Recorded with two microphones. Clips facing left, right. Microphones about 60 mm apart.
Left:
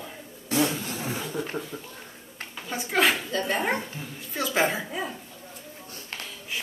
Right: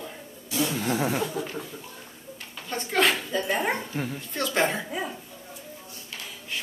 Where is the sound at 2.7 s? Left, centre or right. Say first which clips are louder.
Even; centre.